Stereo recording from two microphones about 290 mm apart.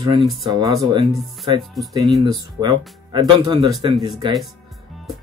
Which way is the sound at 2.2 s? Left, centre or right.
Centre.